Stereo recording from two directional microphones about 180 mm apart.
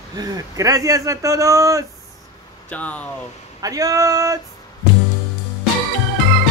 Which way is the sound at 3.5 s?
20° right (ahead or behind).